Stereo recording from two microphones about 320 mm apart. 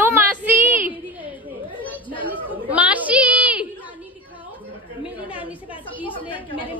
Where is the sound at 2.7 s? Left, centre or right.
Centre.